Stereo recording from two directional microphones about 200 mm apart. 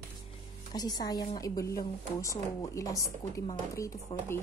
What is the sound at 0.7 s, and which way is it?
A woman's voice, 20° left (ahead or behind).